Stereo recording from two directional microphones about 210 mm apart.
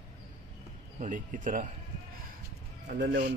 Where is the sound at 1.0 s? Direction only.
40° right (ahead or behind).